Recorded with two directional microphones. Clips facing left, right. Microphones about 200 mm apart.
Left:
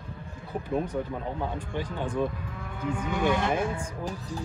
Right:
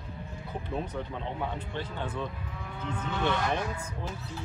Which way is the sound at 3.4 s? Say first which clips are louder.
Left 4 dB; 25° left (ahead or behind).